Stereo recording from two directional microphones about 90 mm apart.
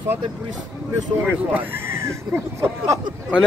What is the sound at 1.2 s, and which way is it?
Speech, 20° right (ahead or behind).